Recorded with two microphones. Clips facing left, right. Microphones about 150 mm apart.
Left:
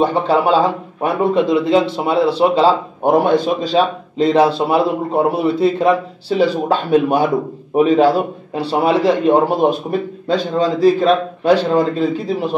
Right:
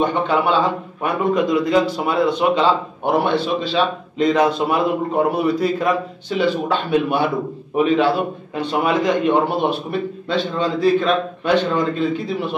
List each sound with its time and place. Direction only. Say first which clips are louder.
0.0 s a man's voice: left 3 dB; 35° left (ahead or behind)
4.2 s a man's voice: left 3 dB; 30° left (ahead or behind)